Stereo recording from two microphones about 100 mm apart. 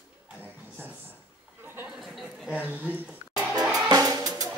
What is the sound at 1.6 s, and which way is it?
Chatter, 20° right (ahead or behind).